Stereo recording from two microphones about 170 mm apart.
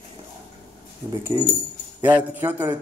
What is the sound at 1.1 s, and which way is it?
Speech, 20° right (ahead or behind).